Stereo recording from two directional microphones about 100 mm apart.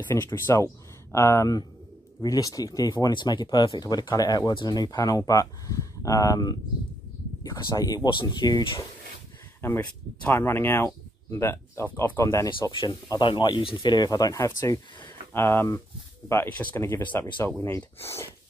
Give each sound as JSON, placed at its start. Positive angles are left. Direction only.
{"t": 0.1, "sound": "speech", "side_deg": 30}
{"t": 2.9, "sound": "speech", "side_deg": 50}
{"t": 8.1, "sound": "speech", "side_deg": 50}
{"t": 9.6, "sound": "speech", "side_deg": 20}
{"t": 12.6, "sound": "speech", "side_deg": 40}
{"t": 13.2, "sound": "speech", "side_deg": 50}